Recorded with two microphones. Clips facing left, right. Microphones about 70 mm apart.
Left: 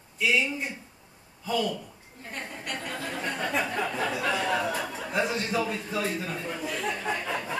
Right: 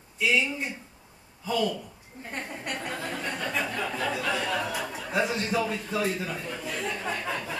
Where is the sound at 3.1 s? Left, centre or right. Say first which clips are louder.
Left 4 dB; centre.